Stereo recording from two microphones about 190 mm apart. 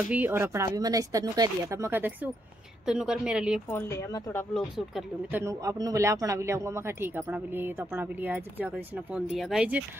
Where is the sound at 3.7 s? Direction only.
15° left (ahead or behind).